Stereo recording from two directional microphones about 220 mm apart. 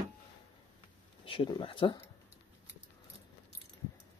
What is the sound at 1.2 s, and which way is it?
Speech, 25° left (ahead or behind).